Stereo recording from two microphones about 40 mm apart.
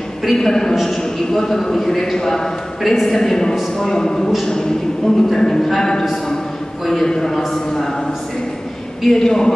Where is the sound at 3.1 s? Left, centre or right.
Centre.